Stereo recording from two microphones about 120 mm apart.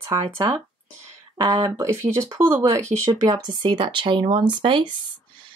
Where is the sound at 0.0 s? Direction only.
35° right (ahead or behind).